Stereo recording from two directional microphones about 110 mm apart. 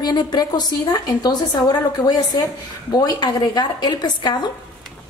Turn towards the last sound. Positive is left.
turn(degrees=40)  # may be behind; listen again after turning